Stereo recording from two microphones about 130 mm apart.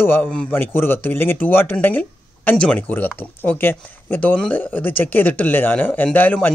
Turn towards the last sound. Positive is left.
turn(degrees=15)  # may be behind; listen again after turning